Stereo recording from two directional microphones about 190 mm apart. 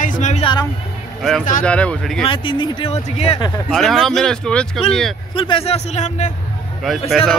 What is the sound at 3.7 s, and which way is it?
Speech, centre (ahead or behind).